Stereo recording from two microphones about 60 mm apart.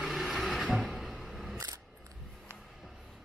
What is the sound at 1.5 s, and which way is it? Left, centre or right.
Camera, right.